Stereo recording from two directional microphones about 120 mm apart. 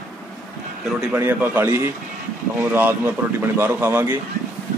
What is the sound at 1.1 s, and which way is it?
Speech, 15° right (ahead or behind).